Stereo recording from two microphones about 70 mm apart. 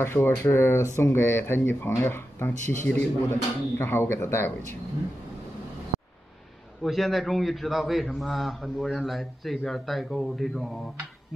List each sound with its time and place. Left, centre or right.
0.0 s speech: left
6.8 s speech: centre